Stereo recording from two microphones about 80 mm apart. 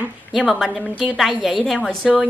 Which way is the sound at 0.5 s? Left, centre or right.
Centre.